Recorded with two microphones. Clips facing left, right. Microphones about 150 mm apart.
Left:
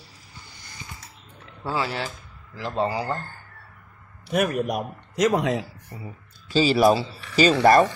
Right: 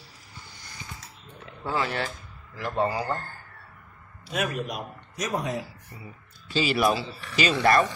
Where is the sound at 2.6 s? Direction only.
25° left (ahead or behind).